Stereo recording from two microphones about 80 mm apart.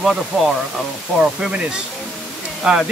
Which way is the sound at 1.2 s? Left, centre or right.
Centre.